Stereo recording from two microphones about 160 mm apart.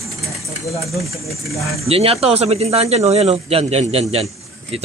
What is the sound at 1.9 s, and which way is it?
Speech, 35° right (ahead or behind).